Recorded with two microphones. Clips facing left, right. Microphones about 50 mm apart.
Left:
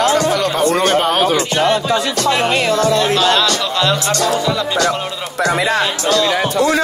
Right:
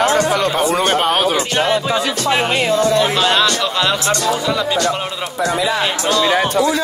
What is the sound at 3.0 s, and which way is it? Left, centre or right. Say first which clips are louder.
Speech: left 1 dB; centre.